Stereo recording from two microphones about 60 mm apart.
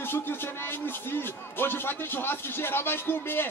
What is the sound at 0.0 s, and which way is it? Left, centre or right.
Speech, left.